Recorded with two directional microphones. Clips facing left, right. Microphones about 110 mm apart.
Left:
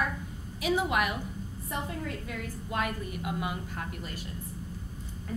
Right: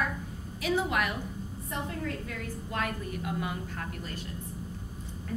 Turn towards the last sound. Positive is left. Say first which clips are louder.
# even
turn(degrees=15)  # may be behind; listen again after turning